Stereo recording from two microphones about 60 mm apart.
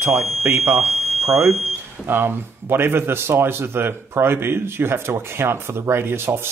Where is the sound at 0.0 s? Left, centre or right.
Right.